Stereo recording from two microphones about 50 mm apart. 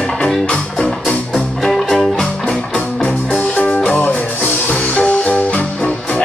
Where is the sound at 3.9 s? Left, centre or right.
Left.